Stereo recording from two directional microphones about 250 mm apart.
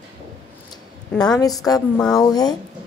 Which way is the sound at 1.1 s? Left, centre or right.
Centre.